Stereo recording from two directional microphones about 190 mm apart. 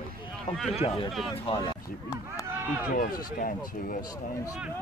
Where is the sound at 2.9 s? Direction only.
50° left (ahead or behind).